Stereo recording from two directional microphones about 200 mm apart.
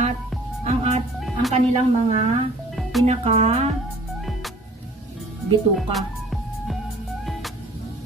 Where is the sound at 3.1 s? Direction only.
30° right (ahead or behind).